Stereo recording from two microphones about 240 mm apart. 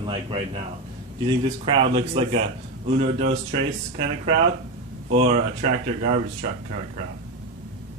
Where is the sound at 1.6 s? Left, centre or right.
Right.